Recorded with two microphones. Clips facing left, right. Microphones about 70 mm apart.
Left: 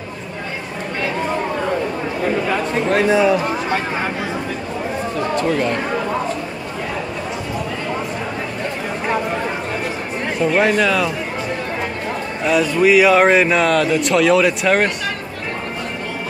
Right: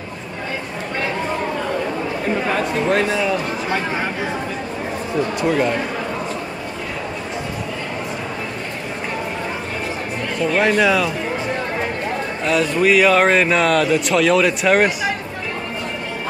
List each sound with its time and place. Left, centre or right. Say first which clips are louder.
2.6 s speech: left 1 dB; centre
3.1 s speech: left 6 dB; centre
5.3 s speech: left 1 dB; centre
10.6 s speech: right 2 dB; centre
12.4 s speech: left 2 dB; centre